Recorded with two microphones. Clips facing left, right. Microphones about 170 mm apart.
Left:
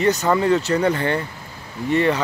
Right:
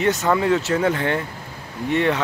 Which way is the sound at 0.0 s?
Centre (ahead or behind).